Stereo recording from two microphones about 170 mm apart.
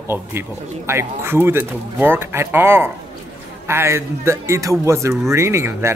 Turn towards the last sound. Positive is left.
turn(degrees=-15)  # may be behind; listen again after turning